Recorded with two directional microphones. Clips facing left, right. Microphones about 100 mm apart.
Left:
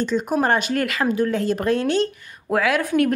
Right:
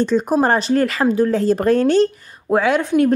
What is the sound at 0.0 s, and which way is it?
A woman's voice, 35° right (ahead or behind).